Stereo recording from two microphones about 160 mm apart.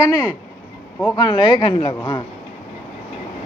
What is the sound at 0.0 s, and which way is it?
Speech, 20° left (ahead or behind).